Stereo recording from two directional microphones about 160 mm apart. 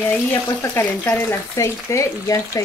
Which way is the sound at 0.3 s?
20° left (ahead or behind).